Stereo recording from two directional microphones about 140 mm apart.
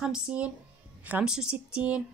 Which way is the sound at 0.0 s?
5° right (ahead or behind).